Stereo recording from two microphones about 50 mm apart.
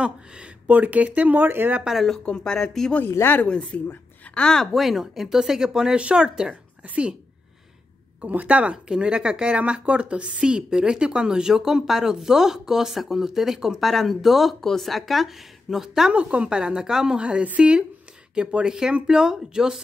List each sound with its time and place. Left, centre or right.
0.7 s speech: right
2.2 s speech: centre
3.1 s speech: left
3.4 s speech: left
4.7 s speech: centre
5.9 s a woman's voice: right
8.2 s a woman's voice: right
8.8 s a woman's voice: centre
16.1 s a woman's voice: right